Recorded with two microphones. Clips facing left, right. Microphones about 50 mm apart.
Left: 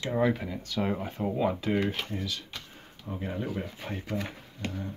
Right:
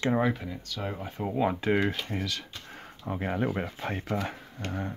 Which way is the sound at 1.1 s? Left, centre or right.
Centre.